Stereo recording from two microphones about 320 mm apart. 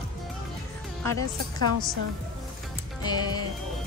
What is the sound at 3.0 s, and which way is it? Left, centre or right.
Speech, centre.